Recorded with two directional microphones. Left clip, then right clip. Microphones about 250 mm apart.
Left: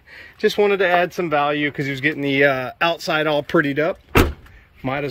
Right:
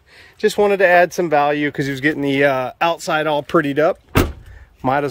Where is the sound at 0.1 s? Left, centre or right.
Centre.